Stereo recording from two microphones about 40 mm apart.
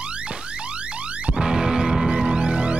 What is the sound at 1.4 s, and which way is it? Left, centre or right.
Music, centre.